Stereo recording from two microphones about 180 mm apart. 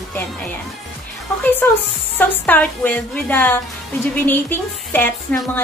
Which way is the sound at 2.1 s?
10° left (ahead or behind).